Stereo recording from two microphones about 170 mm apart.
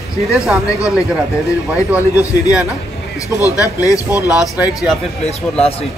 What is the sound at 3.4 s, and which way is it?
Speech, 20° left (ahead or behind).